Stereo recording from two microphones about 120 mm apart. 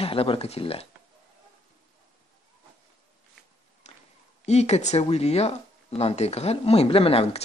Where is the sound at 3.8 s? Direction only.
70° left (ahead or behind).